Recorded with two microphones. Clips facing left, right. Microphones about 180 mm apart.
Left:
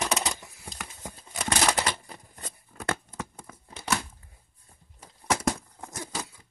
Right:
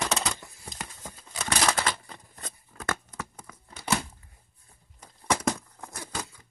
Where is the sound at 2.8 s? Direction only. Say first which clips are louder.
Left 1 dB; 25° left (ahead or behind).